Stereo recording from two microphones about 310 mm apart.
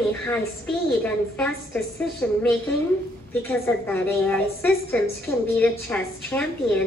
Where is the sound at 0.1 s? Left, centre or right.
Centre.